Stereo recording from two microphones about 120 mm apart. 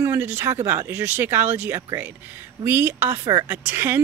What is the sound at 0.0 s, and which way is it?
Speech, 20° right (ahead or behind).